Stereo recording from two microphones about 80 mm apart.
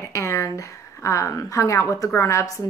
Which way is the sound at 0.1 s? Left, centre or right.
Left.